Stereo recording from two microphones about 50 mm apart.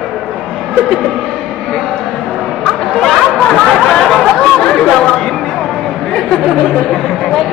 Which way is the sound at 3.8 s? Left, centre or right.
Centre.